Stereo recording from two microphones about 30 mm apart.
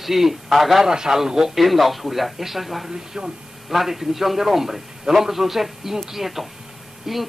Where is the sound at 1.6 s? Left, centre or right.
Centre.